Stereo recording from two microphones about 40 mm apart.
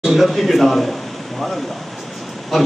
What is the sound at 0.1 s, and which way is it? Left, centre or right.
Speech, centre.